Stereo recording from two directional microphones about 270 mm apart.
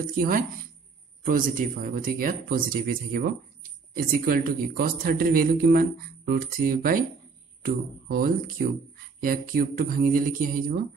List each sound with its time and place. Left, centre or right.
0.0 s speech: right